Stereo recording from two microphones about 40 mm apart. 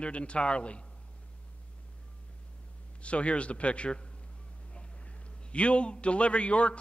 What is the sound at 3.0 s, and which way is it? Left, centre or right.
A man's voice, left.